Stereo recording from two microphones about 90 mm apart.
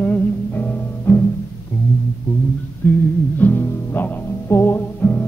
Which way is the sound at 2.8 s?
20° left (ahead or behind).